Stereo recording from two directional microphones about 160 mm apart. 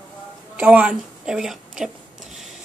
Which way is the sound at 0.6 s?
10° right (ahead or behind).